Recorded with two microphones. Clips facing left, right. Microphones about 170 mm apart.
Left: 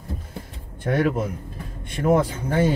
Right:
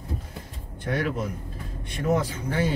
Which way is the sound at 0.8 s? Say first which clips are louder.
Left 6 dB; 50° left (ahead or behind).